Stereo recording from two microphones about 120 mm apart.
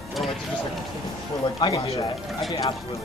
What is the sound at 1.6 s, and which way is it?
Speech, 45° left (ahead or behind).